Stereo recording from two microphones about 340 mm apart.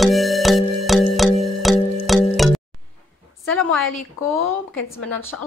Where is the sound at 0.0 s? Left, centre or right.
Centre.